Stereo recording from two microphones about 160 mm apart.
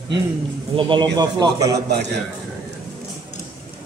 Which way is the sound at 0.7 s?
30° right (ahead or behind).